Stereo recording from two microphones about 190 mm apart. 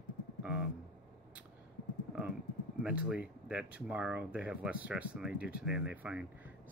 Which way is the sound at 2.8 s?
5° right (ahead or behind).